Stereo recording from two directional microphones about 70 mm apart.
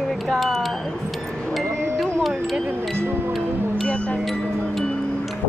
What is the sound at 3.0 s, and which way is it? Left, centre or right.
Music, right.